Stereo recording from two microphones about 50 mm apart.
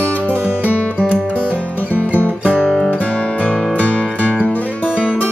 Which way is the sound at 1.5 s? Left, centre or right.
Right.